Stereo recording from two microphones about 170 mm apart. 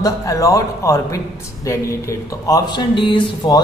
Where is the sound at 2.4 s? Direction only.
20° left (ahead or behind).